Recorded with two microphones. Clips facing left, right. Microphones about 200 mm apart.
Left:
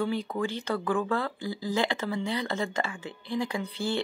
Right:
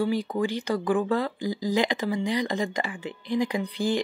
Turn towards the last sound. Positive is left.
turn(degrees=-15)  # may be behind; listen again after turning